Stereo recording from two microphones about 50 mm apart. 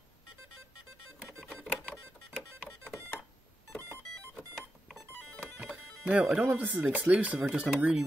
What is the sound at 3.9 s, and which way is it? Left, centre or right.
Music, right.